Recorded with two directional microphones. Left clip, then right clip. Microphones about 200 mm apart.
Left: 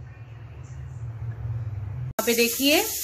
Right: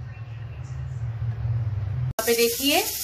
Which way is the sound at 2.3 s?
55° left (ahead or behind).